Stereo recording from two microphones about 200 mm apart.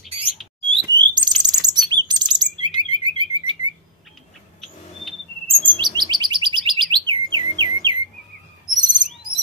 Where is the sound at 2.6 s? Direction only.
90° right.